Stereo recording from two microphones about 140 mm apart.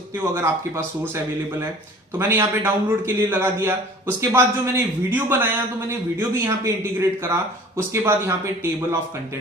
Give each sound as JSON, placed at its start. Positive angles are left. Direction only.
{"t": 0.2, "sound": "a man's voice", "side_deg": -20}
{"t": 2.1, "sound": "a man's voice", "side_deg": -20}